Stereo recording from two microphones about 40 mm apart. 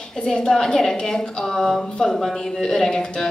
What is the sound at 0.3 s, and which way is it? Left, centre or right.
A woman's voice, centre.